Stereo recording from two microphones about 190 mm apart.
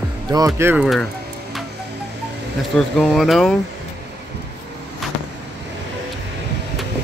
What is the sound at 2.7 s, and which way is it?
Speech, 5° left (ahead or behind).